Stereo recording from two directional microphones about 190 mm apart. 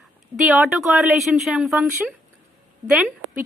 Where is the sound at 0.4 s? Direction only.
5° right (ahead or behind).